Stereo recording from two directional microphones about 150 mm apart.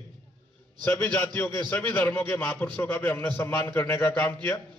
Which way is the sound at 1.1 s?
15° left (ahead or behind).